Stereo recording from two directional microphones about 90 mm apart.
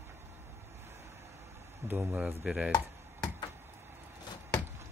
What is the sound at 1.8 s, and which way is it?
Speech, 25° right (ahead or behind).